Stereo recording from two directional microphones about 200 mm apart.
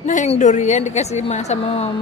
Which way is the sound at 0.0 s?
40° left (ahead or behind).